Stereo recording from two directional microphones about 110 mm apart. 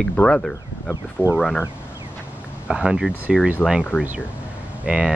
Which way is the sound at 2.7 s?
10° right (ahead or behind).